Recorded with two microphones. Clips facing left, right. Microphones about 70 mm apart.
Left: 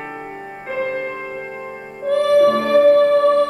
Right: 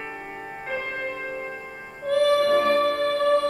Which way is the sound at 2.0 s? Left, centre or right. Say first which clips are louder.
Left 6 dB; centre.